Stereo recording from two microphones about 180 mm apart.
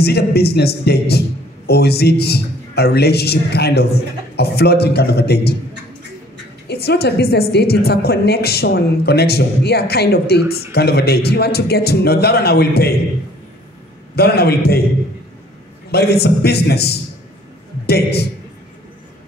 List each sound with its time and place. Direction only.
0.0 s a woman's voice: 60° left (ahead or behind)
6.7 s a woman's voice: 65° left (ahead or behind)
14.1 s a woman's voice: 60° left (ahead or behind)
15.9 s a woman's voice: 65° left (ahead or behind)